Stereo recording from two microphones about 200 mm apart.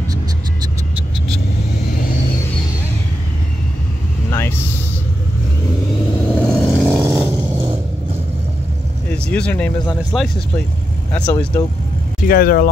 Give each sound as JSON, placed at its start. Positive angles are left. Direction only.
{"t": 4.3, "sound": "vehicle", "side_deg": 10}
{"t": 6.3, "sound": "vehicle", "side_deg": 5}
{"t": 6.9, "sound": "a sound", "side_deg": -10}
{"t": 9.1, "sound": "speech", "side_deg": 5}
{"t": 12.3, "sound": "speech", "side_deg": 45}